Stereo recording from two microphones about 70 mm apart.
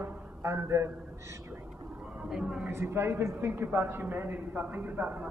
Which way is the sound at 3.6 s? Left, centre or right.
Right.